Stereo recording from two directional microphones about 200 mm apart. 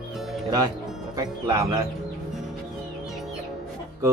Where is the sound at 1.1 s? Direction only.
15° right (ahead or behind).